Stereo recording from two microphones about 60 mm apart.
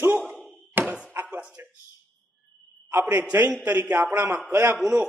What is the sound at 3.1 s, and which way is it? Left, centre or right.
A man's voice, right.